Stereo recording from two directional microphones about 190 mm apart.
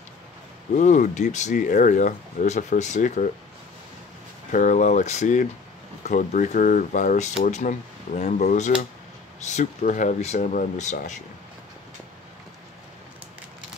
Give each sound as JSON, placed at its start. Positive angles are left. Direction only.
{"t": 0.7, "sound": "speech", "side_deg": 40}
{"t": 4.5, "sound": "speech", "side_deg": 40}